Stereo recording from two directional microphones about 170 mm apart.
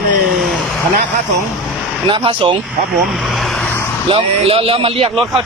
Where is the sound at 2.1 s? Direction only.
30° right (ahead or behind).